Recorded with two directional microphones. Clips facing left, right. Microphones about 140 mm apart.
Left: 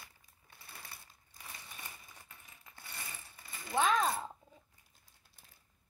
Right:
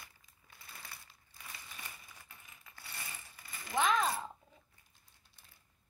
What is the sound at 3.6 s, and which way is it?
Speech, 30° left (ahead or behind).